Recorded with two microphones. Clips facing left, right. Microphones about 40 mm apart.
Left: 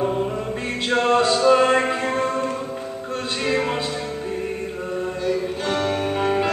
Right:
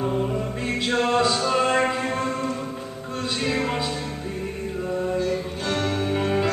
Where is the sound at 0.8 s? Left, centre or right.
Centre.